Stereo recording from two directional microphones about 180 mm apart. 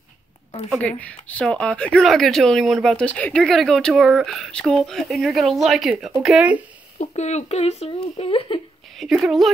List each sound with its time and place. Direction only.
0.7 s speech: 5° left (ahead or behind)
7.0 s speech: 40° left (ahead or behind)
8.9 s speech: centre (ahead or behind)